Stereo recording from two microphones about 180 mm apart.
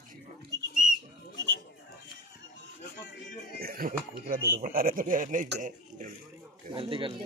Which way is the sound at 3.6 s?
55° right (ahead or behind).